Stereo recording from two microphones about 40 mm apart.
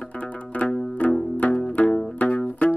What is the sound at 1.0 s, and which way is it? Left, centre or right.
Music, left.